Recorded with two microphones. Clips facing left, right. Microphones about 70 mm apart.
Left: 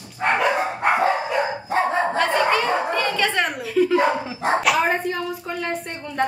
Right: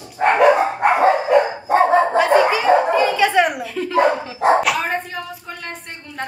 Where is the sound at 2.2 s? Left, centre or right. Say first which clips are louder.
Right 5 dB; centre.